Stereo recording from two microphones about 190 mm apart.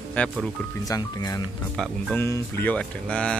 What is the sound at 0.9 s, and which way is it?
Speech, 20° left (ahead or behind).